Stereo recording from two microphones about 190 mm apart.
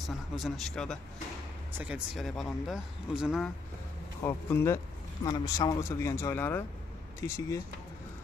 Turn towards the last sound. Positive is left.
turn(degrees=15)  # may be behind; listen again after turning